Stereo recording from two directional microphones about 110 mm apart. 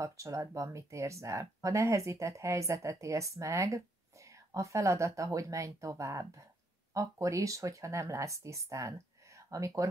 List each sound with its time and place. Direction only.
0.0 s speech: 30° right (ahead or behind)